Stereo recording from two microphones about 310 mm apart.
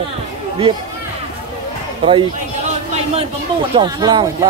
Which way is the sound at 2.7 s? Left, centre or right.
Right.